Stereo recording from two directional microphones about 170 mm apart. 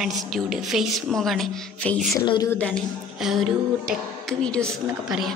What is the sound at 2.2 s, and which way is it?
Speech, 30° left (ahead or behind).